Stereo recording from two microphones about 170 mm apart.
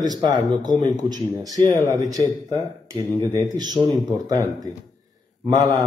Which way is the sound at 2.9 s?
15° left (ahead or behind).